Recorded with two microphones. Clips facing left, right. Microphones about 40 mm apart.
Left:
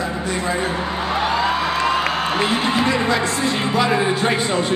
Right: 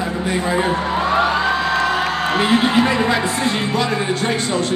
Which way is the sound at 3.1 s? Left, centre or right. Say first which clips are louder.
Right 1 dB; centre.